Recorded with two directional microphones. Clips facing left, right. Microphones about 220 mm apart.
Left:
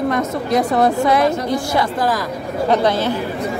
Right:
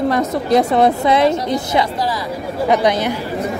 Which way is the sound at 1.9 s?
50° left (ahead or behind).